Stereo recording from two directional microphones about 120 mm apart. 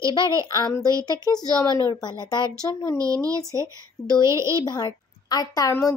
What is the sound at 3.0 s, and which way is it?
Speech, 30° right (ahead or behind).